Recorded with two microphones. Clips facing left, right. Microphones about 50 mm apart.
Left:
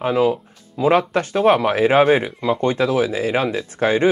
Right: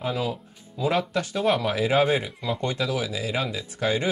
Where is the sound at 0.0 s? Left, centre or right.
Left.